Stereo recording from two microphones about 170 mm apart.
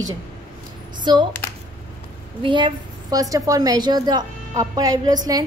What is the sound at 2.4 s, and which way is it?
A woman's voice, 25° right (ahead or behind).